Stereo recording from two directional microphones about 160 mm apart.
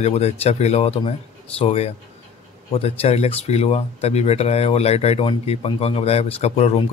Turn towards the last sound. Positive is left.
turn(degrees=40)  # may be behind; listen again after turning